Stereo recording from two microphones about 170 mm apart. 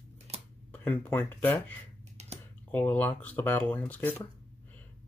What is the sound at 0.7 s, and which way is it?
Speech, 10° left (ahead or behind).